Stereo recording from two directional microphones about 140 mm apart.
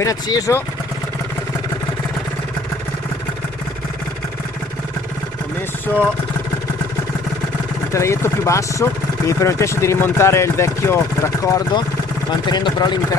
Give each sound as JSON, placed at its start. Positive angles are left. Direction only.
{"t": 0.0, "sound": "speech", "side_deg": 25}
{"t": 5.9, "sound": "speech", "side_deg": 15}
{"t": 7.9, "sound": "speech", "side_deg": 20}